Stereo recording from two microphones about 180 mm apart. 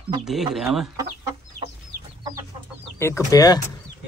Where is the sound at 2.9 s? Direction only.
15° left (ahead or behind).